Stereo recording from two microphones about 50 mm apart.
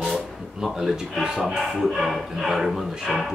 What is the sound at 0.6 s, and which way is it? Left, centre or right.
Speech, centre.